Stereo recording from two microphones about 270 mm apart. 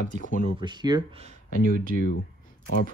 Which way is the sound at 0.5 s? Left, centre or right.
Centre.